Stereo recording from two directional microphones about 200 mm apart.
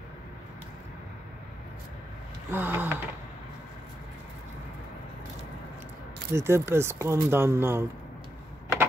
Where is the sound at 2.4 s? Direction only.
10° right (ahead or behind).